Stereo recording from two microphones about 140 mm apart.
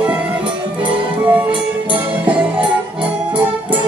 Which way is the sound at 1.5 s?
40° right (ahead or behind).